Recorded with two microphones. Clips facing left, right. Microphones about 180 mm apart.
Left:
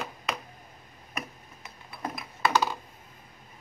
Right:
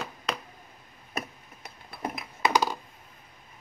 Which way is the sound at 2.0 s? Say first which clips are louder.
Right 1 dB; 20° right (ahead or behind).